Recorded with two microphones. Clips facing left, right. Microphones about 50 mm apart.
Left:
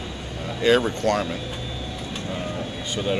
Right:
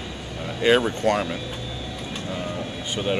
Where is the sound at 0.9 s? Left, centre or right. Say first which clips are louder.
Even; centre.